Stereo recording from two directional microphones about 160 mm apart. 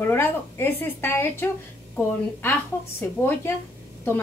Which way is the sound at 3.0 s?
10° left (ahead or behind).